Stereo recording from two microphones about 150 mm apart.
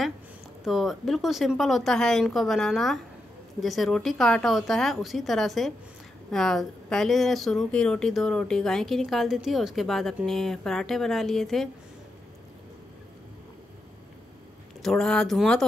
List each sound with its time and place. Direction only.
0.7 s speech: centre (ahead or behind)
14.8 s speech: 5° left (ahead or behind)